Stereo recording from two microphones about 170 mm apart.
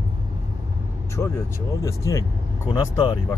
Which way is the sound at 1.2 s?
15° left (ahead or behind).